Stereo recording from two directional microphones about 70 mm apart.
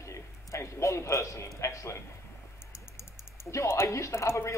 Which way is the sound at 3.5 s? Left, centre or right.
Left.